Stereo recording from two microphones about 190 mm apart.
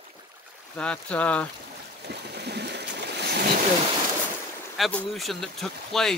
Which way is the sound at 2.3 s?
60° right (ahead or behind).